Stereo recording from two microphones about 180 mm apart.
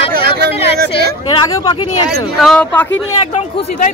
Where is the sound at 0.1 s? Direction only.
60° right (ahead or behind).